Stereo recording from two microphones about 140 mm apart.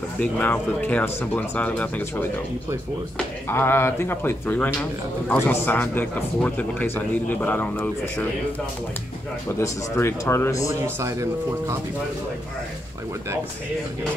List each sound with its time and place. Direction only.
0.2 s a man's voice: 10° left (ahead or behind)
3.4 s a man's voice: 15° left (ahead or behind)
9.6 s speech: 20° left (ahead or behind)
10.7 s speech: 20° right (ahead or behind)